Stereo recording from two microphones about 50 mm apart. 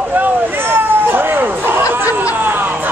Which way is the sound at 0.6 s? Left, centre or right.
Right.